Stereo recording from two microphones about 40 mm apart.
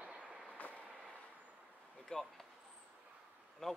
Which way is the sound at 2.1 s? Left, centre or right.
Centre.